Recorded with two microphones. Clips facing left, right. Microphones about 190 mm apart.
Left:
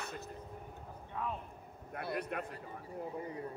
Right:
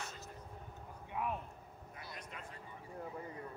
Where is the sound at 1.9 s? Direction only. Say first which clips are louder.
Left 14 dB; 60° left (ahead or behind).